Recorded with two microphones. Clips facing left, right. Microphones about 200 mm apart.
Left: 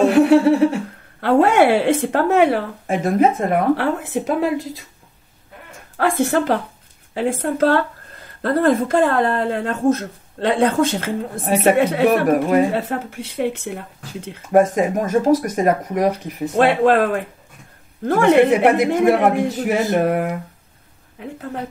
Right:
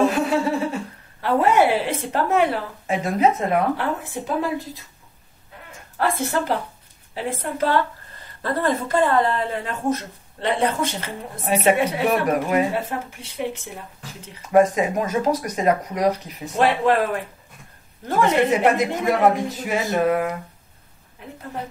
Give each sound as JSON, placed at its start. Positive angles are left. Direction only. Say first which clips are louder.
{"t": 0.0, "sound": "laughter", "louder": "left 7 dB", "side_deg": 65}
{"t": 1.2, "sound": "speech", "louder": "left 4 dB", "side_deg": 75}
{"t": 3.0, "sound": "speech", "louder": "left 4 dB", "side_deg": 50}
{"t": 3.7, "sound": "speech", "louder": "left 6 dB", "side_deg": 75}
{"t": 5.9, "sound": "a man's voice", "louder": "left 5 dB", "side_deg": 60}
{"t": 8.4, "sound": "a man's voice", "louder": "left 6 dB", "side_deg": 60}
{"t": 10.7, "sound": "speech", "louder": "left 7 dB", "side_deg": 55}
{"t": 12.8, "sound": "speech", "louder": "left 5 dB", "side_deg": 75}
{"t": 14.5, "sound": "speech", "louder": "left 2 dB", "side_deg": 45}
{"t": 18.0, "sound": "a man's voice", "louder": "left 6 dB", "side_deg": 55}